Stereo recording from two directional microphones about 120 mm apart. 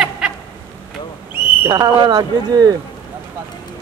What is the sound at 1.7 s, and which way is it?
Speech, 35° right (ahead or behind).